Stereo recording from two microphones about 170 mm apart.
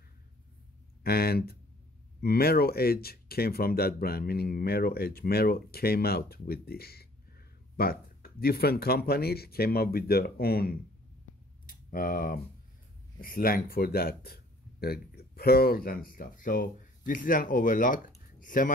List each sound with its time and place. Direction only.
1.0 s speech: 65° left (ahead or behind)
11.6 s clicking: 55° left (ahead or behind)
13.2 s speech: 60° left (ahead or behind)